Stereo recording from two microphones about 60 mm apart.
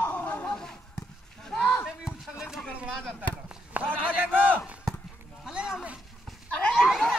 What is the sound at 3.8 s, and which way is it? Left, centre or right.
Run, right.